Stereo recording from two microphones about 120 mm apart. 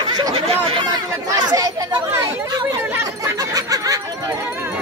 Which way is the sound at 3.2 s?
30° right (ahead or behind).